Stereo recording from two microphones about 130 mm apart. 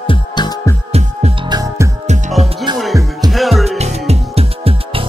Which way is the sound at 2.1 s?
60° right (ahead or behind).